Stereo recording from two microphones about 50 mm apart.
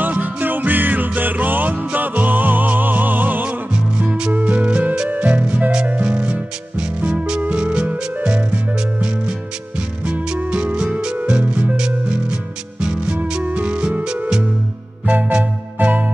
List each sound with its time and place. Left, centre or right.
0.0 s music: right
10.3 s music: centre
11.7 s music: centre
15.0 s music: right